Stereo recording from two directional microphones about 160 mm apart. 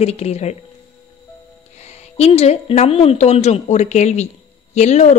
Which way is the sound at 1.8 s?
40° left (ahead or behind).